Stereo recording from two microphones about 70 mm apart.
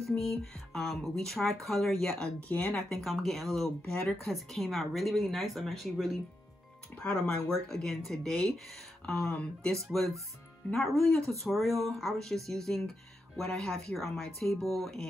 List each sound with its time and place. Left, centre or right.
0.0 s speech: centre
7.0 s speech: centre
7.6 s speech: centre
11.0 s speech: centre